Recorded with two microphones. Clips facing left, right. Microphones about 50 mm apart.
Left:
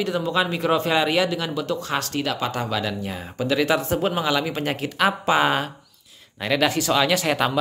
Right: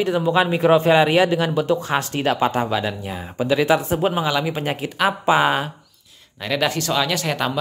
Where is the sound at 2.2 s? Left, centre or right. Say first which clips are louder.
Right 6 dB; right.